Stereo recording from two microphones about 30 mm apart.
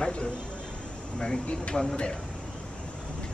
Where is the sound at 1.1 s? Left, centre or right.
Left.